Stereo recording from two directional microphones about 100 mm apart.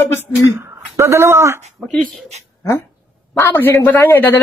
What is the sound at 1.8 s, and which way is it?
Speech, 10° left (ahead or behind).